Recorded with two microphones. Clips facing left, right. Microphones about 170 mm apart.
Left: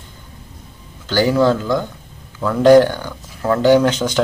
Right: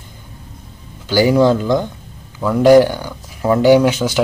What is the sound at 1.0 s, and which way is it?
Speech, 10° right (ahead or behind).